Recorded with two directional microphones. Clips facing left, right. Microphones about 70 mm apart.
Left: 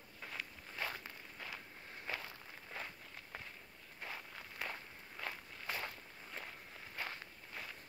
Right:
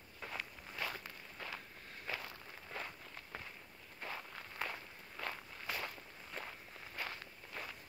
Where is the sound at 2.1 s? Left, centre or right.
Left.